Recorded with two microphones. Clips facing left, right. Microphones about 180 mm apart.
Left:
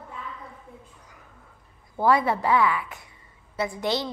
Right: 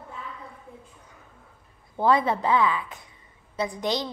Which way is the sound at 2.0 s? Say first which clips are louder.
Even; 20° right (ahead or behind).